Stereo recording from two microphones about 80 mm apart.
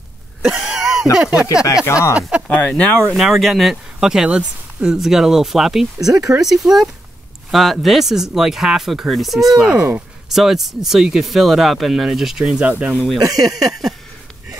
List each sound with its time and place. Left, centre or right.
0.4 s throat clearing: centre
1.1 s speech: centre
1.5 s speech: left
2.4 s speech: centre
3.2 s speech: centre
5.9 s speech: right
6.4 s speech: centre
12.6 s speech: centre
13.5 s speech: centre